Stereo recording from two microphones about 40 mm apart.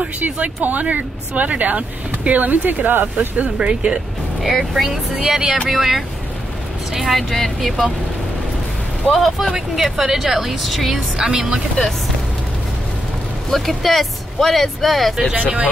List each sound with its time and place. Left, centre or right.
0.2 s speech: right
3.4 s speech: right
5.2 s speech: centre
7.2 s speech: centre
9.1 s speech: centre
11.1 s speech: centre
13.5 s speech: centre
15.3 s speech: right